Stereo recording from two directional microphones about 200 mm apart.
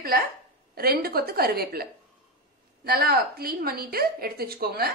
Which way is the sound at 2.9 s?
50° right (ahead or behind).